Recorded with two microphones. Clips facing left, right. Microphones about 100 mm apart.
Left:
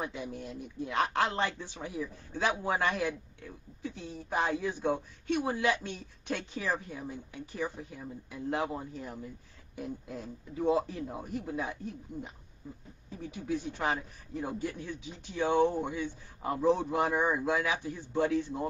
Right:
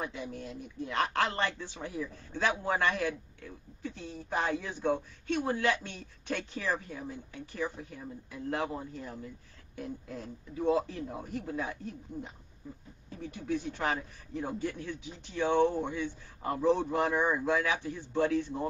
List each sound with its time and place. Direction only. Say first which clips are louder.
0.0 s a man's voice: left 1 dB; 15° left (ahead or behind)